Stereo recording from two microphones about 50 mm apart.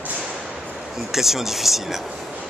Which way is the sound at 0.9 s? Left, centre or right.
Centre.